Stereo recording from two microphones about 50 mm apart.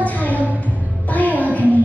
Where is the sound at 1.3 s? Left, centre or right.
Left.